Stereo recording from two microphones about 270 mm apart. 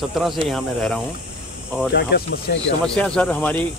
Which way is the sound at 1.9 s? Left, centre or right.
Left.